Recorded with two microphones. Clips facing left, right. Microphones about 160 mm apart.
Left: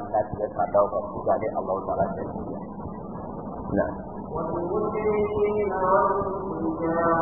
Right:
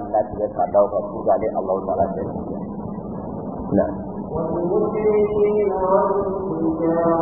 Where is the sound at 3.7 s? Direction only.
40° right (ahead or behind).